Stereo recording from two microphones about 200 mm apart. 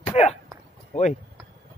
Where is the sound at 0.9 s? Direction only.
35° left (ahead or behind).